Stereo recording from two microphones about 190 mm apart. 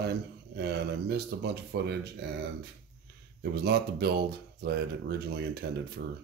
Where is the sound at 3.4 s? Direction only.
60° right (ahead or behind).